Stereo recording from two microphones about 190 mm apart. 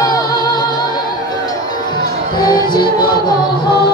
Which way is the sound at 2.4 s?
20° left (ahead or behind).